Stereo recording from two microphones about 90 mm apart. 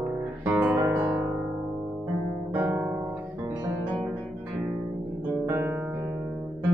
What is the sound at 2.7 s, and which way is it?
Guitar, 20° right (ahead or behind).